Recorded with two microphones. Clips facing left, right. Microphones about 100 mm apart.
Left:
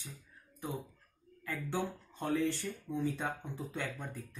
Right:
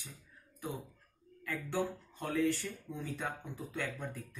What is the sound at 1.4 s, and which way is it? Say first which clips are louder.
Speech: right 1 dB; 15° left (ahead or behind).